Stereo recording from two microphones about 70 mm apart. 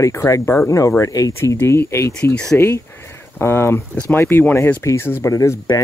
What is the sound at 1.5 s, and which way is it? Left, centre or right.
Speech, left.